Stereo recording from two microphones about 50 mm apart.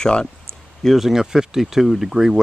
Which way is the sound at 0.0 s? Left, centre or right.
Centre.